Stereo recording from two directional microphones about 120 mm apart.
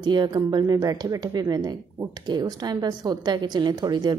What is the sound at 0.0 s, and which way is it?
Speech, 40° right (ahead or behind).